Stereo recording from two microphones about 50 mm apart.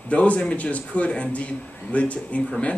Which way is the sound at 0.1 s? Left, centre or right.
Left.